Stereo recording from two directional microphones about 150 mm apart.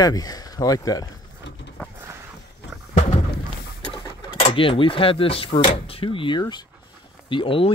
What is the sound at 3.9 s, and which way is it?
Speech, 35° left (ahead or behind).